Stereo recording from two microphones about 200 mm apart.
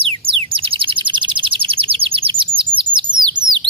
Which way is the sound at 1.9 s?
25° right (ahead or behind).